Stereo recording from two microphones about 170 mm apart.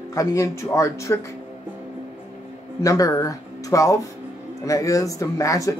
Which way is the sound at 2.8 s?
20° left (ahead or behind).